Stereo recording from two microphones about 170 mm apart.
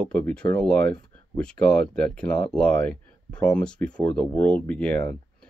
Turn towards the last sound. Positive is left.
turn(degrees=5)  # may be behind; listen again after turning